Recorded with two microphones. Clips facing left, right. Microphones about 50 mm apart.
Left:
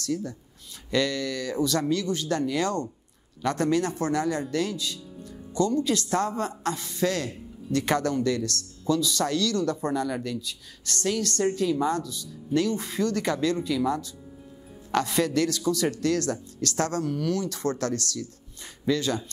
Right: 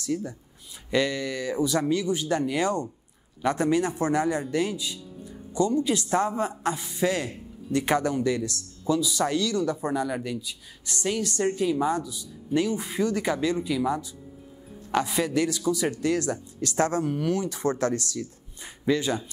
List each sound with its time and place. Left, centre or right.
0.0 s a woman's voice: centre